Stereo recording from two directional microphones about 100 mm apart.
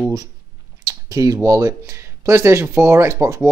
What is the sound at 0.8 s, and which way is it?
Speech, 35° right (ahead or behind).